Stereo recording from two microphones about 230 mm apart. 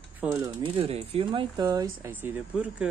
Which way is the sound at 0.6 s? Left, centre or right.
Right.